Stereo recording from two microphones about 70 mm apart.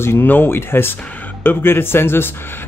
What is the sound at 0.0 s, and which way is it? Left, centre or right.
Speech, left.